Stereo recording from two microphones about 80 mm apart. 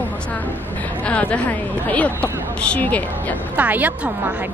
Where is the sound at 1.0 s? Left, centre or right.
Centre.